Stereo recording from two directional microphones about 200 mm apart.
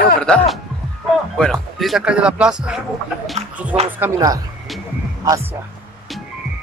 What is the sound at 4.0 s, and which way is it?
Speech, 20° right (ahead or behind).